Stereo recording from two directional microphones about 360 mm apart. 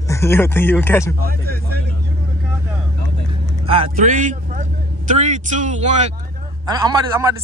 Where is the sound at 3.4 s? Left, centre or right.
Centre.